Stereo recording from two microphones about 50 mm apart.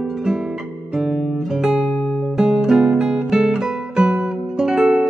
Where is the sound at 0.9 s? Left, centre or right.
Centre.